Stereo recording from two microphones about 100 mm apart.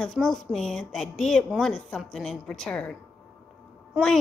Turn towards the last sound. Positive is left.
turn(degrees=-10)  # may be behind; listen again after turning